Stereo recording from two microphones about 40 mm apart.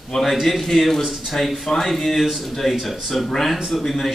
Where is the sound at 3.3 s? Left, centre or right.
Centre.